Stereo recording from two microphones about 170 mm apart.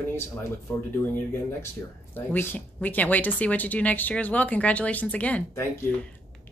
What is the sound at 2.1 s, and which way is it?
A woman's voice, 10° left (ahead or behind).